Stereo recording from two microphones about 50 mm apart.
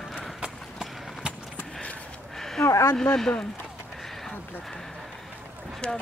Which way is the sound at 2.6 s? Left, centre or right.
Left.